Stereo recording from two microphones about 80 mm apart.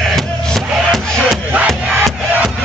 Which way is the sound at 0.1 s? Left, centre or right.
Centre.